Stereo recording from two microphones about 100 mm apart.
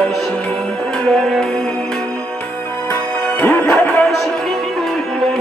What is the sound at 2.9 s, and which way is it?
Music, 20° left (ahead or behind).